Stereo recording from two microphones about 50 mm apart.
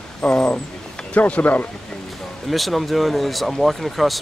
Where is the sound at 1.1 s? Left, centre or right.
Left.